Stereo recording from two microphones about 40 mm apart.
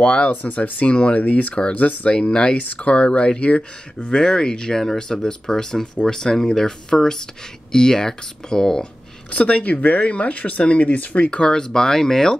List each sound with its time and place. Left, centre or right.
0.0 s speech: left
0.3 s speech: left
1.5 s speech: left
1.8 s speech: left
2.1 s speech: left
2.5 s speech: left; by 8.8 s centre
9.3 s speech: left
11.2 s speech: left